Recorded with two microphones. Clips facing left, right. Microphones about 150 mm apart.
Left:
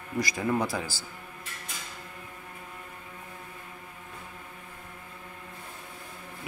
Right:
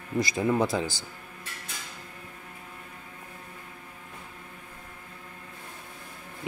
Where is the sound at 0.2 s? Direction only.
25° right (ahead or behind).